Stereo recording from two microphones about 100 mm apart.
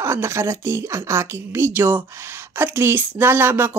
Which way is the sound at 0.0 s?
25° right (ahead or behind).